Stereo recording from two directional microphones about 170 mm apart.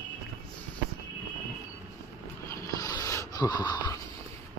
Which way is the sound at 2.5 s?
20° left (ahead or behind).